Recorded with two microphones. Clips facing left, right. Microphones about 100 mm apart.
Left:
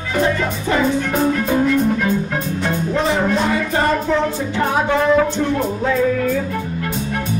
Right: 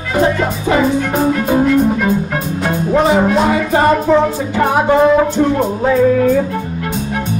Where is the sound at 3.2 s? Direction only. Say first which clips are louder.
Right 5 dB; 15° right (ahead or behind).